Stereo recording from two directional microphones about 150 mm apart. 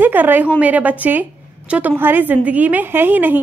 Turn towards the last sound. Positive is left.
turn(degrees=-15)  # may be behind; listen again after turning